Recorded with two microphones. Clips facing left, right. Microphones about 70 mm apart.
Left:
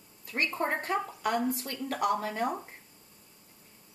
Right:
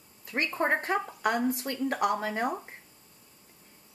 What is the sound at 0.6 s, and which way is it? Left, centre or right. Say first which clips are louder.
Speech: right 4 dB; right.